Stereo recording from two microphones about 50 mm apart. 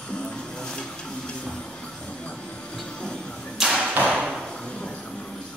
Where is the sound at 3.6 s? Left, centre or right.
Centre.